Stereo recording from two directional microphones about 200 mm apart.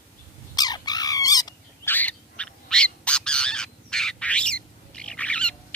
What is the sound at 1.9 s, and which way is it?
Bird, 5° left (ahead or behind).